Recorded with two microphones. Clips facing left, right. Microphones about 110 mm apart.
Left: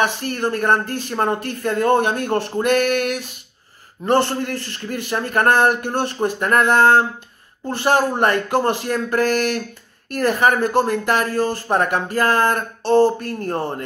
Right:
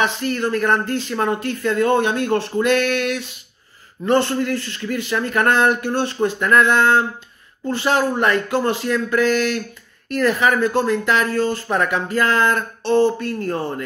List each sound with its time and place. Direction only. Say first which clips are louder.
0.0 s speech: even; 45° left (ahead or behind)